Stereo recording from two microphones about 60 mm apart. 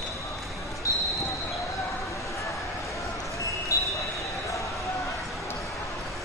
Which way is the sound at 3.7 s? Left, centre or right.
Left.